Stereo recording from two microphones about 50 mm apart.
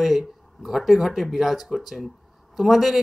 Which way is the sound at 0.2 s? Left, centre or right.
Centre.